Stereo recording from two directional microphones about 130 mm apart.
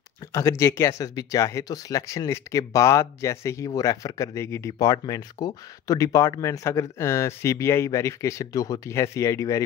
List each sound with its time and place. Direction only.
0.3 s speech: 25° left (ahead or behind)